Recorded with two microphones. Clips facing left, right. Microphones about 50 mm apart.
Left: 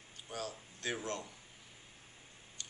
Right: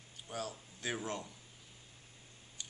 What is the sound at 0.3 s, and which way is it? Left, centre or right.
Speech, centre.